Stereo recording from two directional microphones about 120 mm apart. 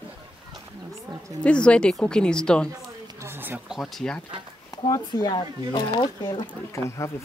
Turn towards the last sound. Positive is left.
turn(degrees=25)  # may be behind; listen again after turning